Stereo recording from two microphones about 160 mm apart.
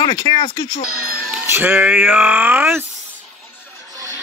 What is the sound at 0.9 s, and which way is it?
Speech, 65° right (ahead or behind).